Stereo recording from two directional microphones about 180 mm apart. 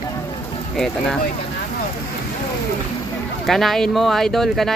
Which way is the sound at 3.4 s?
Centre (ahead or behind).